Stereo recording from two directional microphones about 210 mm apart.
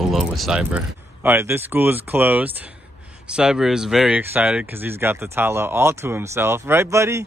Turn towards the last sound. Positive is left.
turn(degrees=-15)  # may be behind; listen again after turning